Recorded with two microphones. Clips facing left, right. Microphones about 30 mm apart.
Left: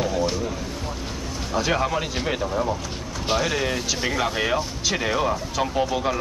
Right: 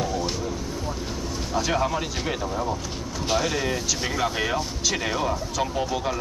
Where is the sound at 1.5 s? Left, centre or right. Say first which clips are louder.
Left 2 dB; centre.